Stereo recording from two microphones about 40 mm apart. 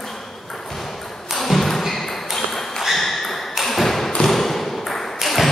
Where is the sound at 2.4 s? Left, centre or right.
Centre.